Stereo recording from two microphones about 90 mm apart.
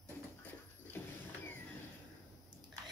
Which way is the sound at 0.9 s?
25° left (ahead or behind).